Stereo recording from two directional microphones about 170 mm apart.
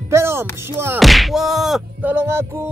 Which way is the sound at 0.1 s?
15° right (ahead or behind).